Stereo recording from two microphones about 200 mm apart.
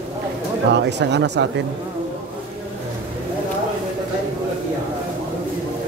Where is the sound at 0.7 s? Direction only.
60° right (ahead or behind).